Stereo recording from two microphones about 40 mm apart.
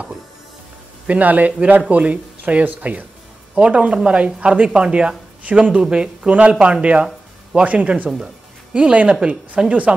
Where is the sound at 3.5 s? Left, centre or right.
Right.